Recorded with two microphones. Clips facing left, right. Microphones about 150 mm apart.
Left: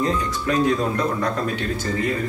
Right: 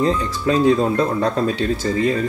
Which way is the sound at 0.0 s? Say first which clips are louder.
Right 4 dB; 30° right (ahead or behind).